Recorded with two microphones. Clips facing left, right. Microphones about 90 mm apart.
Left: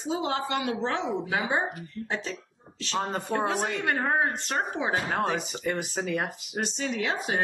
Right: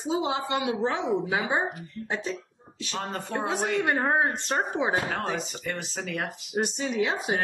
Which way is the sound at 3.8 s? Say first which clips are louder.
Even; 20° right (ahead or behind).